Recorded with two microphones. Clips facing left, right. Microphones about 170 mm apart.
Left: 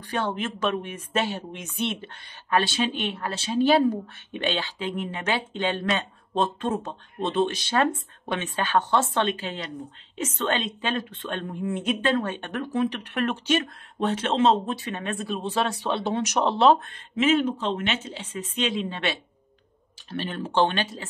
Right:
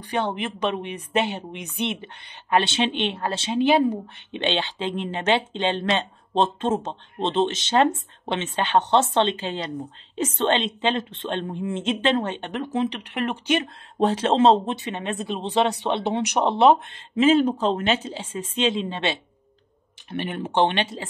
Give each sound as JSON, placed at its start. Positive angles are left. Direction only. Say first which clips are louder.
{"t": 0.1, "sound": "a woman's voice", "louder": "right 2 dB", "side_deg": -15}
{"t": 13.9, "sound": "a woman's voice", "louder": "right 4 dB", "side_deg": -30}